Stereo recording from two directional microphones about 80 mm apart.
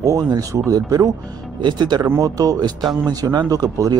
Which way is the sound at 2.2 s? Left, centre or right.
Right.